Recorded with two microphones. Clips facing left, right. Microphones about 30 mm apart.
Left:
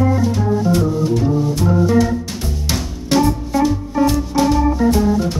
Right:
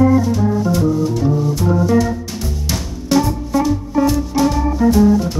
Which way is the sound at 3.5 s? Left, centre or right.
Centre.